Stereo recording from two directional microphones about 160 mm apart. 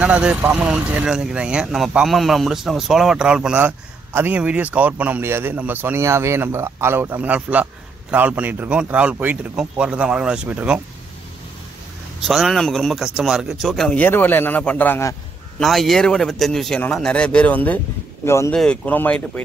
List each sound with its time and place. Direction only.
0.0 s speech: 5° right (ahead or behind)
12.2 s a man's voice: centre (ahead or behind)
15.6 s a man's voice: centre (ahead or behind); by 18.5 s 15° left (ahead or behind)
18.5 s speech: 5° left (ahead or behind)